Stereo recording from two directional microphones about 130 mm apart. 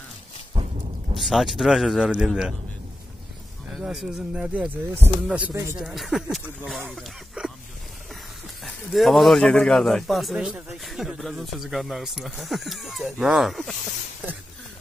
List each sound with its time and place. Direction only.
1.1 s a man's voice: centre (ahead or behind)
3.7 s speech: centre (ahead or behind)
5.8 s a man's voice: centre (ahead or behind)
6.9 s a sound: centre (ahead or behind)
8.6 s a man's voice: centre (ahead or behind)